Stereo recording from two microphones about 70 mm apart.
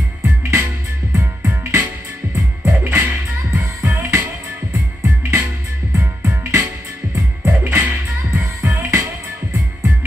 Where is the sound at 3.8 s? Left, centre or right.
Right.